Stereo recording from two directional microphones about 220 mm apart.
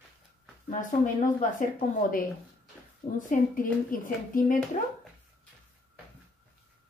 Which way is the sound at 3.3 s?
40° left (ahead or behind).